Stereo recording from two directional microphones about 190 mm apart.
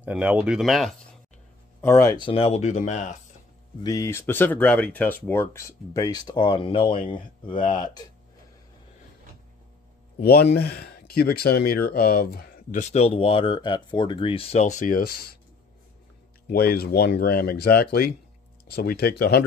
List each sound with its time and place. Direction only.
0.0 s speech: 10° right (ahead or behind)
1.8 s speech: 15° left (ahead or behind)
2.2 s speech: 30° left (ahead or behind)
3.8 s speech: 15° left (ahead or behind)
10.2 s speech: 55° left (ahead or behind)
12.8 s speech: 35° left (ahead or behind); by 15.3 s 55° left (ahead or behind)
16.4 s speech: 55° left (ahead or behind)